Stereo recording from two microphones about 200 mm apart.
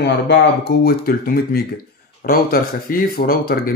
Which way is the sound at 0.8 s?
50° left (ahead or behind).